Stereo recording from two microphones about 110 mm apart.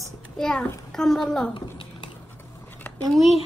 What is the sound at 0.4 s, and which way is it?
A child's voice, 5° left (ahead or behind).